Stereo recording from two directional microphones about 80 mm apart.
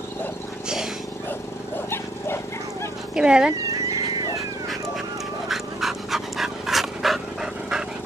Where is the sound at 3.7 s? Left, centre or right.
Right.